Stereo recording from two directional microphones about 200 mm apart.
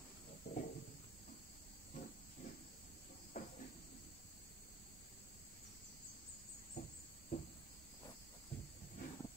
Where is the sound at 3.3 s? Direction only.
40° left (ahead or behind).